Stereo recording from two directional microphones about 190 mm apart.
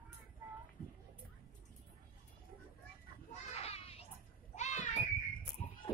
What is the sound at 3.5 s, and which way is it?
Children playing, 35° left (ahead or behind).